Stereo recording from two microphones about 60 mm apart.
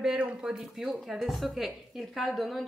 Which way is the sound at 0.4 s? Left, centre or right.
Centre.